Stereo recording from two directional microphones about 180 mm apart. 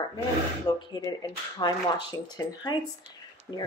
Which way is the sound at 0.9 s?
20° left (ahead or behind).